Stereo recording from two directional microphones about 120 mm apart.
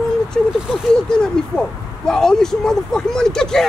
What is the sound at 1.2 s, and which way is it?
Speech, 5° left (ahead or behind).